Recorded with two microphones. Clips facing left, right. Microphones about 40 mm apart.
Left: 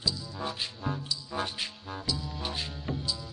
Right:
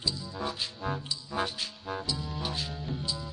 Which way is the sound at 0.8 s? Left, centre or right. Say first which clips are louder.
Right 1 dB; centre.